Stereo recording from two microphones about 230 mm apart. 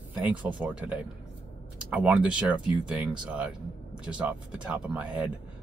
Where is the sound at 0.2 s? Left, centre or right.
Centre.